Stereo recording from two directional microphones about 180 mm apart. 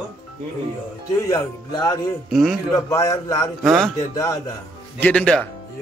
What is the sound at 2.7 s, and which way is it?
Speech, 20° left (ahead or behind).